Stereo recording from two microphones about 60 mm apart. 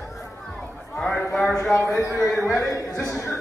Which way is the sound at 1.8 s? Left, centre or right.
Left.